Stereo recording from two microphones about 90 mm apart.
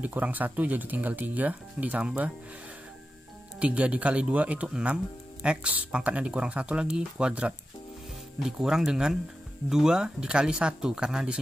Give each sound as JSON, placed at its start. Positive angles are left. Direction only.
{"t": 0.0, "sound": "speech", "side_deg": -20}
{"t": 3.5, "sound": "speech", "side_deg": -15}